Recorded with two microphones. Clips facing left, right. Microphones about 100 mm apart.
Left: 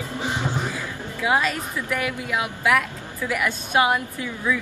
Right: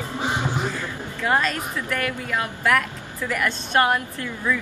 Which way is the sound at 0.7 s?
10° left (ahead or behind).